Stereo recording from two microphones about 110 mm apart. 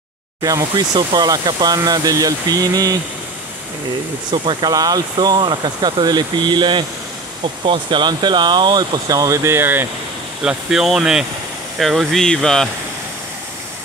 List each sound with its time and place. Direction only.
0.4 s speech: 35° right (ahead or behind)
4.3 s speech: 45° right (ahead or behind); by 9.8 s 20° right (ahead or behind)
10.4 s speech: 5° right (ahead or behind)